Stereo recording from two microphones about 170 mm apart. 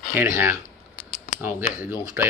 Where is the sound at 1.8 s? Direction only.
15° right (ahead or behind).